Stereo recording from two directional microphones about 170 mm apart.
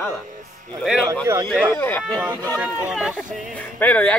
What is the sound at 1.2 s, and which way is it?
Speech, 15° right (ahead or behind).